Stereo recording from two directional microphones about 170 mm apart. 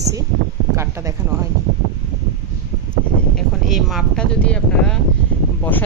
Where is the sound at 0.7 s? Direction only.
15° right (ahead or behind).